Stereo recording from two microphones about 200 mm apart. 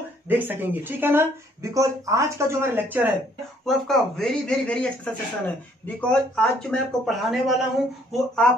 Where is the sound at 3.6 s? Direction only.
Centre (ahead or behind).